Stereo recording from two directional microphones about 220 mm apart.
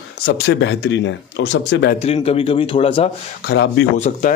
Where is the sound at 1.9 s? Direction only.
25° left (ahead or behind).